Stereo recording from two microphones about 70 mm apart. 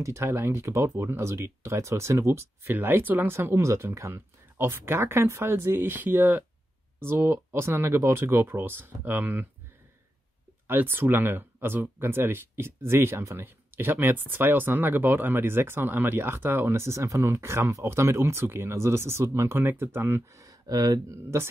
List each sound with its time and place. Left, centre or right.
0.0 s speech: right
10.7 s speech: right
20.3 s speech: right
21.2 s speech: right